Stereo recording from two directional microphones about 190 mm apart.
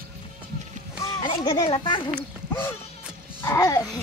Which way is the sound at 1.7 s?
25° left (ahead or behind).